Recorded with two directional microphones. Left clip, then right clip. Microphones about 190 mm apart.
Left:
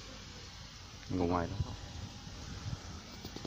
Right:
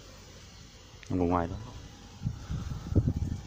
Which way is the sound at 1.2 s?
45° right (ahead or behind).